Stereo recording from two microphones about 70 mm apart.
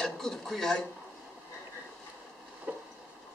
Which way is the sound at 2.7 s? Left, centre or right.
Centre.